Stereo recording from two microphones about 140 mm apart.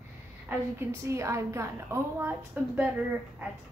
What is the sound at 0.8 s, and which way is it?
A woman's voice, 20° right (ahead or behind).